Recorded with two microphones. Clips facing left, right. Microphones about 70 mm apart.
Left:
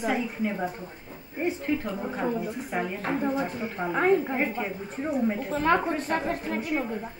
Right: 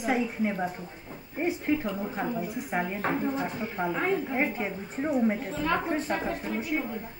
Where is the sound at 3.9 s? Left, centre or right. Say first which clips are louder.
Left 8 dB; left.